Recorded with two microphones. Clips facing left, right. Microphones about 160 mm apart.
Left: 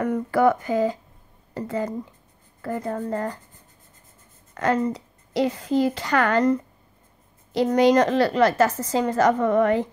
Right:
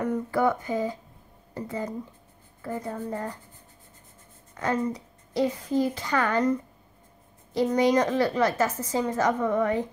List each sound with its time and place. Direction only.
0.0 s a woman's voice: 80° left
1.5 s speech: 75° left (ahead or behind)
4.6 s a woman's voice: 85° left
7.5 s a woman's voice: 85° left